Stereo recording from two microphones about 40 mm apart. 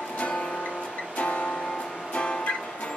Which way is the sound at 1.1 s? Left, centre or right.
Left.